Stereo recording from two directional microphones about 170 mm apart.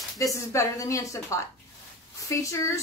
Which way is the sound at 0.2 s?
20° left (ahead or behind).